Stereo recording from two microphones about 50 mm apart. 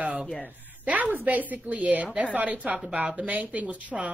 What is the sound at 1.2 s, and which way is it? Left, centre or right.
A woman's voice, right.